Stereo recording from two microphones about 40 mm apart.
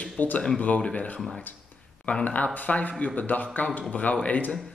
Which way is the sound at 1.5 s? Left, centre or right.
Left.